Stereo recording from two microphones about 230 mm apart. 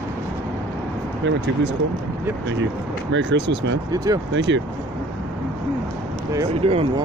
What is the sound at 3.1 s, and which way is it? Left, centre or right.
Speech, right.